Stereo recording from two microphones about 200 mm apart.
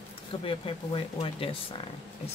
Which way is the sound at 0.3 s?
25° left (ahead or behind).